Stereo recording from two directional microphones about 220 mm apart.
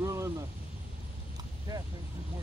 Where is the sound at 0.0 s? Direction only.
15° right (ahead or behind).